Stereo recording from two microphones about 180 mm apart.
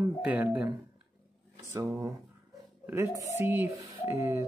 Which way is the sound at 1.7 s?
10° right (ahead or behind).